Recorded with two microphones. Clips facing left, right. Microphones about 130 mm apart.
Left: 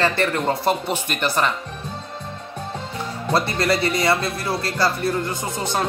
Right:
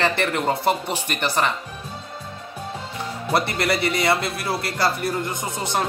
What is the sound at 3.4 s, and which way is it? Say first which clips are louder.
Speech: left 1 dB; 20° right (ahead or behind).